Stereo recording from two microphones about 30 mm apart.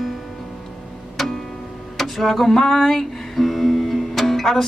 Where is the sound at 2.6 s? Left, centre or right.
Centre.